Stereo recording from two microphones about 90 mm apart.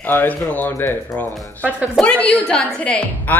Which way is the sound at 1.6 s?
10° right (ahead or behind).